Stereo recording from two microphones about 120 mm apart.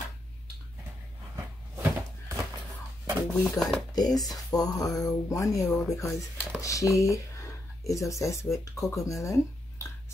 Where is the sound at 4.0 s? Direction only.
30° left (ahead or behind).